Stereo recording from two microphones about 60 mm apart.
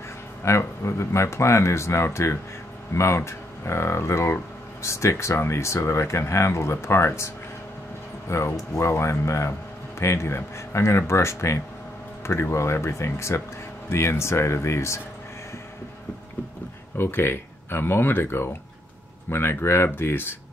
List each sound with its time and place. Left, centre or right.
0.5 s speech: left
8.3 s speech: left
16.9 s speech: left